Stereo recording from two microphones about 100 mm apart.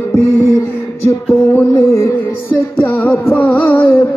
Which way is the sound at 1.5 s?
30° left (ahead or behind).